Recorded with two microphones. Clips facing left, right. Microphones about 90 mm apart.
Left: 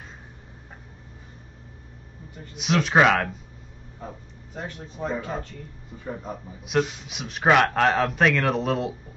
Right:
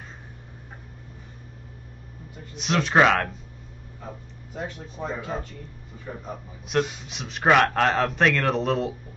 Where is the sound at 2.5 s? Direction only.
Centre (ahead or behind).